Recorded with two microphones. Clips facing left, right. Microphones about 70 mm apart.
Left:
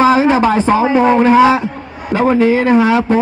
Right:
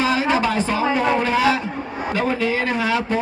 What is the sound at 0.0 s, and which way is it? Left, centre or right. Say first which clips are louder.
A man's voice: left 9 dB; left.